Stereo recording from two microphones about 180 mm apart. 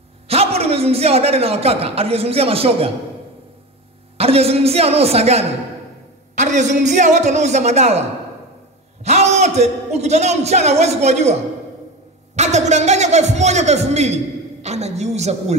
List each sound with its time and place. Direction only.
0.3 s a man's voice: 35° right (ahead or behind)
4.2 s a man's voice: 35° right (ahead or behind)
9.0 s a man's voice: 40° right (ahead or behind)
12.4 s a man's voice: 40° right (ahead or behind)